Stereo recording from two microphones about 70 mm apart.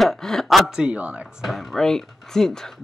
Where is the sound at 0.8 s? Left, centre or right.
Centre.